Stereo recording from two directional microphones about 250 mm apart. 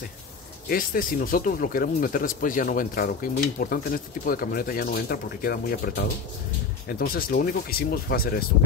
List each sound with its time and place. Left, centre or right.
0.7 s speech: left